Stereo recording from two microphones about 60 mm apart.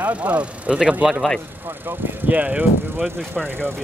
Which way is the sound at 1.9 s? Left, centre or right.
Right.